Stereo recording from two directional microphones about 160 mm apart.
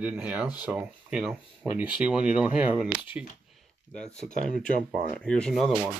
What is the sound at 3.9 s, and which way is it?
Speech, 5° left (ahead or behind).